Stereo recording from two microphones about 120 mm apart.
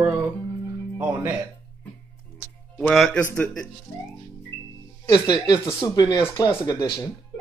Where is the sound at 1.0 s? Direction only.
15° right (ahead or behind).